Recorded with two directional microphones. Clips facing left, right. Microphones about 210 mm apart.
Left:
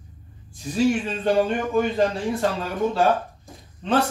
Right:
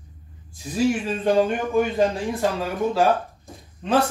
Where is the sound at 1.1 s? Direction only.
10° right (ahead or behind).